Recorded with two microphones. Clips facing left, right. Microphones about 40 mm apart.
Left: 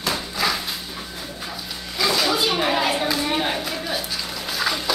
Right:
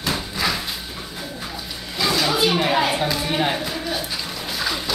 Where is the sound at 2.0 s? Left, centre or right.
Centre.